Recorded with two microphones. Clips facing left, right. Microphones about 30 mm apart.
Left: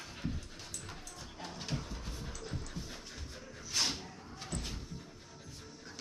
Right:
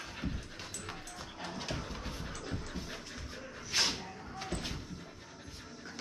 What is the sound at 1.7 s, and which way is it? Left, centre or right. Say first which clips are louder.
Music: right 2 dB; right.